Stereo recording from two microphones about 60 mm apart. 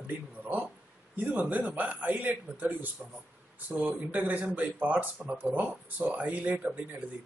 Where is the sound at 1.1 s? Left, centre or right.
Right.